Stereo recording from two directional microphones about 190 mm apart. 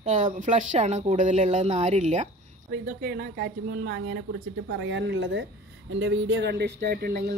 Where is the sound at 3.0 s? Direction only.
55° right (ahead or behind).